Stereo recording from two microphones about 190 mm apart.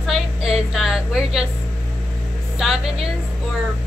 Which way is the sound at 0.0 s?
Centre (ahead or behind).